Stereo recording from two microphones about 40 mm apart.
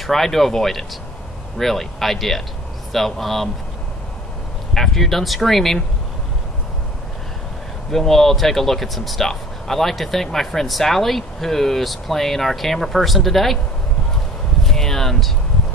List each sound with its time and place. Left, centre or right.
0.0 s speech: centre
4.7 s speech: centre
7.9 s speech: centre
14.6 s a sound: centre